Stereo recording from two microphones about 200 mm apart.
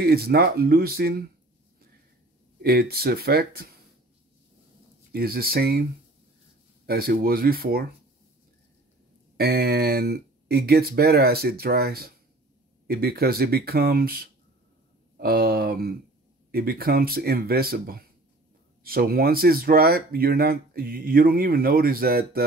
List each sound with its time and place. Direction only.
0.0 s speech: 50° right (ahead or behind)
2.6 s speech: 50° right (ahead or behind)
5.1 s speech: 50° right (ahead or behind)
6.9 s speech: 50° right (ahead or behind)
9.4 s speech: 50° right (ahead or behind)